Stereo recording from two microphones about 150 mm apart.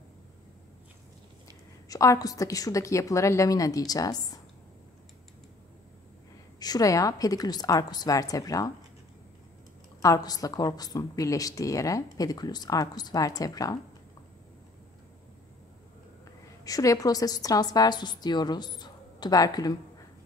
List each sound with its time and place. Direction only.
1.9 s a woman's voice: 25° left (ahead or behind)
6.6 s a woman's voice: 25° left (ahead or behind)
10.0 s a woman's voice: 25° left (ahead or behind)
16.6 s a woman's voice: 25° left (ahead or behind)